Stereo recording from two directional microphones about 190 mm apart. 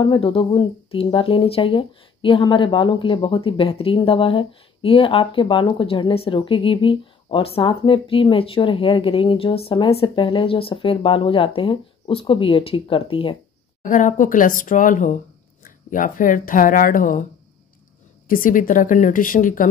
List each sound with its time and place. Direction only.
0.0 s speech: 25° left (ahead or behind)
13.8 s speech: 45° left (ahead or behind)
18.3 s speech: 45° left (ahead or behind)